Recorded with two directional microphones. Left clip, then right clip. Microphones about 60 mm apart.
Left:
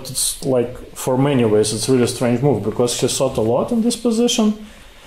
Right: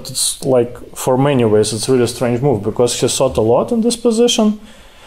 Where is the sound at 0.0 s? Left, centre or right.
Right.